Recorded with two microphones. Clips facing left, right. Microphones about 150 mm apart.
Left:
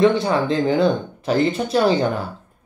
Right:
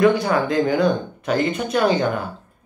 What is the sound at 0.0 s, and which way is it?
Speech, 25° left (ahead or behind).